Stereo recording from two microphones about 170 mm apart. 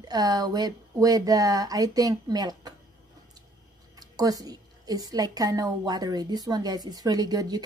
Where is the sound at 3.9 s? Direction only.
20° right (ahead or behind).